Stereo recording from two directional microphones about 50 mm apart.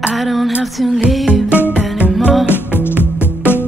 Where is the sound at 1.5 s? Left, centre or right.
Left.